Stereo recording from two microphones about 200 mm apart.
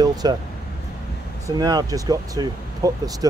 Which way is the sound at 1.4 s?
20° right (ahead or behind).